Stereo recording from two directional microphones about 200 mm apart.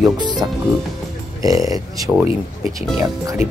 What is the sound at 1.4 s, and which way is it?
Speech, 15° right (ahead or behind).